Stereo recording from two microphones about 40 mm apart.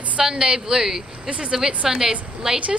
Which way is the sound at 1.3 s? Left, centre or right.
Right.